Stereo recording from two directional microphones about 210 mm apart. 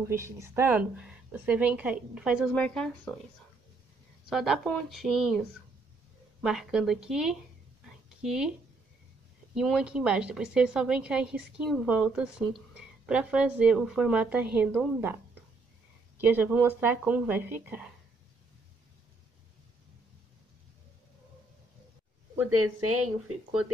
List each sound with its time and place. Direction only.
0.1 s a woman's voice: 10° right (ahead or behind); by 3.2 s 5° left (ahead or behind)
4.3 s a woman's voice: centre (ahead or behind)
6.4 s a woman's voice: centre (ahead or behind)
7.8 s a sound: 5° right (ahead or behind)
9.6 s a woman's voice: 5° right (ahead or behind)
16.2 s a woman's voice: 10° right (ahead or behind)
22.5 s speech: 90° right